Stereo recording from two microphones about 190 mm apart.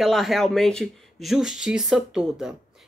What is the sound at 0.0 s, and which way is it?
Speech, centre (ahead or behind).